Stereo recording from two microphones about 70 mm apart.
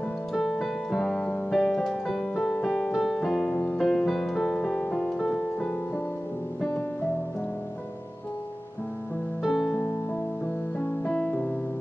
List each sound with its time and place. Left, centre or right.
0.3 s music: centre
9.4 s music: centre
10.8 s music: centre